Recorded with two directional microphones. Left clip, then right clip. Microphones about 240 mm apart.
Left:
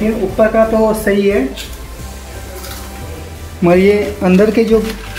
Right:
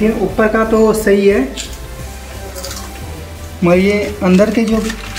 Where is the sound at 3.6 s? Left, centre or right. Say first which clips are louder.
Left 2 dB; centre.